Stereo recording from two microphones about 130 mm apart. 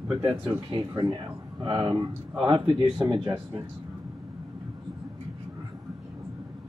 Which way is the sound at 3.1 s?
25° right (ahead or behind).